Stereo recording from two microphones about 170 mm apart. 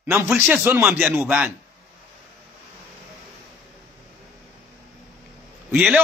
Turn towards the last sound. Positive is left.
turn(degrees=-10)  # may be behind; listen again after turning